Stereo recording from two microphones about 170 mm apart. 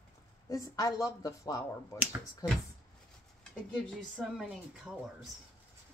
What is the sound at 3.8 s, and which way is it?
A woman's voice, centre (ahead or behind).